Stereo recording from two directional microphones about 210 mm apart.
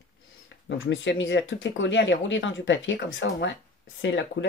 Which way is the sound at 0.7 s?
60° left (ahead or behind).